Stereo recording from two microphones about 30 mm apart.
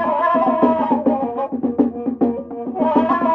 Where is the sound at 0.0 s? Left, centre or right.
Left.